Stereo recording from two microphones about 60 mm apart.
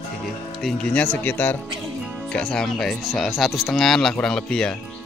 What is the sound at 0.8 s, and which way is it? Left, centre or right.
Speech, left.